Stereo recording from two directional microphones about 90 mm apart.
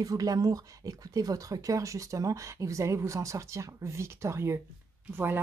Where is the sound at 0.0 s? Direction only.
45° right (ahead or behind).